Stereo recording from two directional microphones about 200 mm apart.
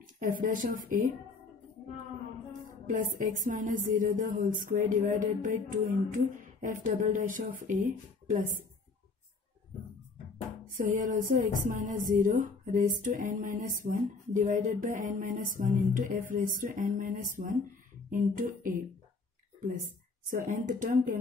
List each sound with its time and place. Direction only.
0.0 s speech: 45° right (ahead or behind)
2.9 s speech: 40° right (ahead or behind)
10.7 s speech: 40° right (ahead or behind)
20.2 s speech: 40° right (ahead or behind)